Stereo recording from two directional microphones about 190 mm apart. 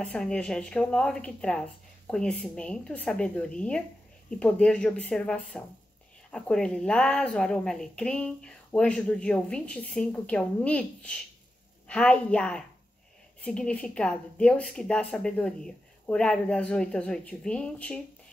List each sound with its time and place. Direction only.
0.0 s a woman's voice: 5° left (ahead or behind)